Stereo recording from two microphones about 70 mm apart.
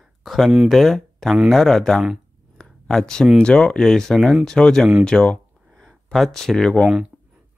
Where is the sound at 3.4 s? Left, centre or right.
Centre.